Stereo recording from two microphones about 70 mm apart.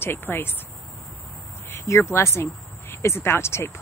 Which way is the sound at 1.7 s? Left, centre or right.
Left.